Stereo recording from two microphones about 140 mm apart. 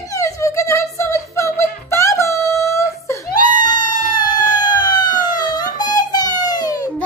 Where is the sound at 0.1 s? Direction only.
20° left (ahead or behind).